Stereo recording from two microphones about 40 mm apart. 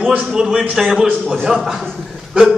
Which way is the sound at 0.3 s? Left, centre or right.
Centre.